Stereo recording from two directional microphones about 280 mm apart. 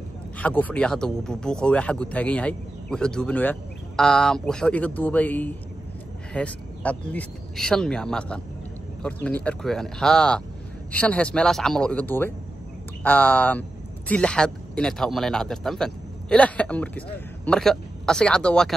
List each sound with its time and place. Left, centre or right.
0.4 s a man's voice: centre